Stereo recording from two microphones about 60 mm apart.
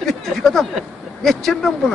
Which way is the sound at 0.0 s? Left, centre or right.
Centre.